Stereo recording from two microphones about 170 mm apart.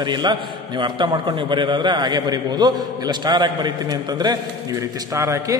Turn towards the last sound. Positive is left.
turn(degrees=-20)  # may be behind; listen again after turning